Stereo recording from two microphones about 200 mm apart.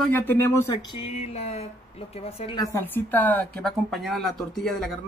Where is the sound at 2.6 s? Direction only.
10° left (ahead or behind).